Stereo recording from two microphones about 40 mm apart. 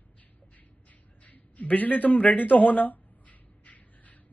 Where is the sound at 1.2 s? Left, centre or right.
Left.